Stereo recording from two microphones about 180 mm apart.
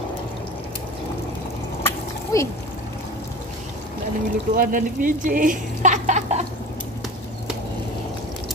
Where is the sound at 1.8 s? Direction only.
15° left (ahead or behind).